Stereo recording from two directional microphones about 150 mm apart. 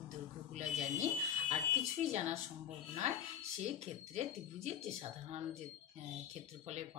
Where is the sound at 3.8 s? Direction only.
50° right (ahead or behind).